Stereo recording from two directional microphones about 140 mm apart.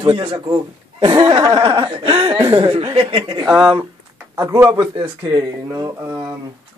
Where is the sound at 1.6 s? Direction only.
40° right (ahead or behind).